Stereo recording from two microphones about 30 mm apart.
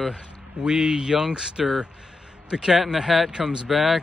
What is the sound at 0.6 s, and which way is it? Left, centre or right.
Speech, right.